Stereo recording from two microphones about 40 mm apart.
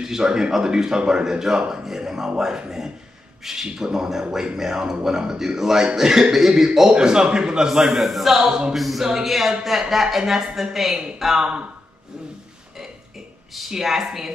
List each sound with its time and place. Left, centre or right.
0.0 s speech: centre
3.6 s speech: centre
8.5 s speech: centre
8.7 s a capella: centre
9.0 s speech: centre
11.3 s speech: right
13.6 s speech: centre